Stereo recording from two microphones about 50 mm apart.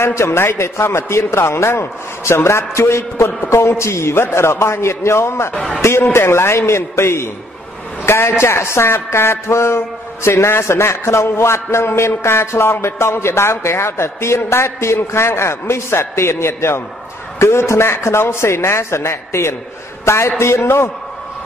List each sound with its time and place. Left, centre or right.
0.0 s speech: left
5.5 s a man's voice: left
5.8 s speech: left
8.0 s a sound: left
8.4 s speech: left